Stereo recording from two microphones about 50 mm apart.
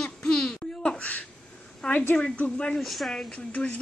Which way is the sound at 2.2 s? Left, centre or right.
Left.